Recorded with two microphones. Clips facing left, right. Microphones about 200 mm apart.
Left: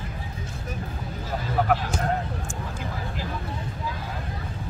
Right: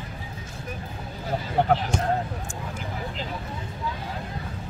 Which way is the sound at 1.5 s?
25° right (ahead or behind).